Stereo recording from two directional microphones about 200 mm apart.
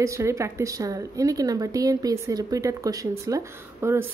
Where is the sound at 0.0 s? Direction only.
15° right (ahead or behind).